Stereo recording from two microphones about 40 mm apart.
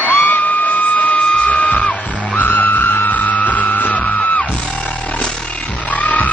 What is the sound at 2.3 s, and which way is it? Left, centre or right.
Music, left.